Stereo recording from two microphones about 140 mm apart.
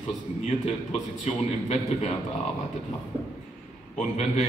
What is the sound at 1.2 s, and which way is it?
Speech, 50° left (ahead or behind).